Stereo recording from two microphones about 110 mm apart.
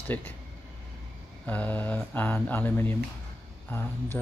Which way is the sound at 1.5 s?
15° left (ahead or behind).